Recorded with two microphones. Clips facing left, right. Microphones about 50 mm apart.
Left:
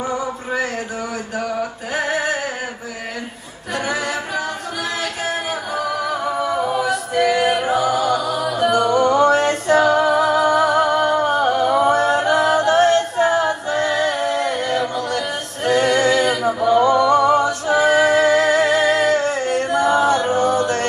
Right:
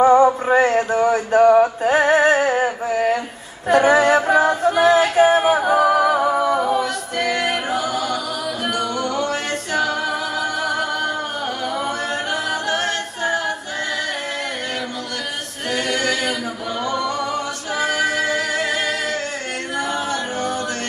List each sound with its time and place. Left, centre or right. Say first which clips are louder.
0.0 s male singing: right 11 dB; right
3.7 s a capella: right 9 dB; right; by 6.8 s centre
6.8 s music: left 4 dB; centre; by 13.8 s left
15.7 s a capella: left 6 dB; left
19.7 s music: left 7 dB; left